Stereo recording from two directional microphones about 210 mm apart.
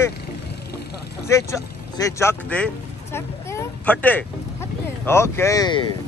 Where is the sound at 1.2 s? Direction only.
15° left (ahead or behind).